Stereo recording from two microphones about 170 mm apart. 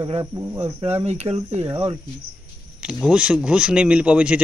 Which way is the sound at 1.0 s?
40° right (ahead or behind).